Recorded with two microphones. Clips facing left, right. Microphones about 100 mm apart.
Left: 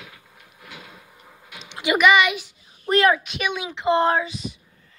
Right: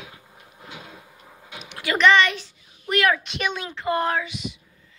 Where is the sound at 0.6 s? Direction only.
25° right (ahead or behind).